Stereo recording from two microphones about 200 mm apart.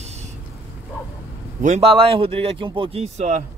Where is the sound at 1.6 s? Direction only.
35° right (ahead or behind).